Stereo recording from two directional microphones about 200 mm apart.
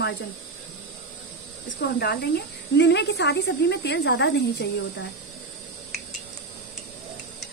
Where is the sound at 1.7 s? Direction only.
55° left (ahead or behind).